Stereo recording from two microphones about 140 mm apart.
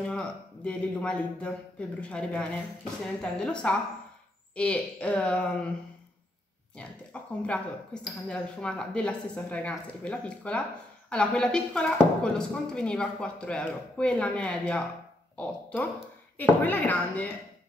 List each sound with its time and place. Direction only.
0.1 s speech: 10° left (ahead or behind)
6.8 s speech: 10° left (ahead or behind)